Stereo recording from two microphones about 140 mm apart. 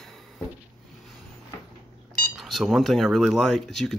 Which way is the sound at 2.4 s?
Centre (ahead or behind).